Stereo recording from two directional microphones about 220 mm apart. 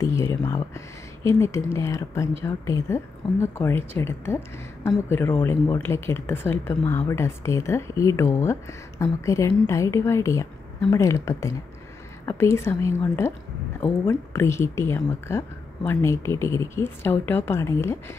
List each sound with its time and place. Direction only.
0.0 s speech: 10° left (ahead or behind)